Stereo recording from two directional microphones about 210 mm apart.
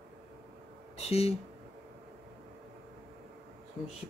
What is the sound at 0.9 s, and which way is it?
Speech, 30° left (ahead or behind).